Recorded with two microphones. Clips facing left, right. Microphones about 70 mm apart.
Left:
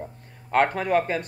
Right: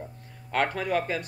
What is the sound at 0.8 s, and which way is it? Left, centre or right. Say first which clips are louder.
Speech: left 4 dB; left.